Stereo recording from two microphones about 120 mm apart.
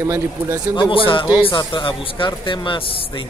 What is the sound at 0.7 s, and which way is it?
Speech, 45° left (ahead or behind).